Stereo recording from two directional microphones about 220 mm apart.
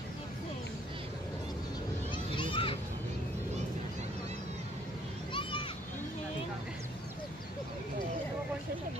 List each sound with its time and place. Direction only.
2.3 s children playing: 25° left (ahead or behind)
5.3 s children playing: 25° left (ahead or behind)